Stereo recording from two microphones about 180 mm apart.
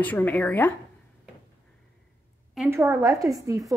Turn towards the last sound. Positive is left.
turn(degrees=-20)  # may be behind; listen again after turning